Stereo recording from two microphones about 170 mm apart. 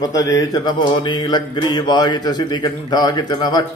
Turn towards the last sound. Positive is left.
turn(degrees=25)  # may be behind; listen again after turning